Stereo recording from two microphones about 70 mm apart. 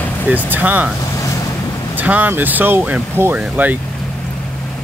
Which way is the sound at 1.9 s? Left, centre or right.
Right.